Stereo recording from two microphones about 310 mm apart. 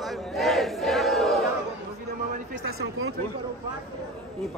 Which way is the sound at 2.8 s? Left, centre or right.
Right.